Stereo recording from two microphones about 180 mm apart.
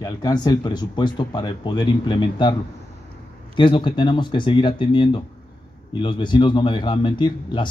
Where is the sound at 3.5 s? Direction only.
25° left (ahead or behind).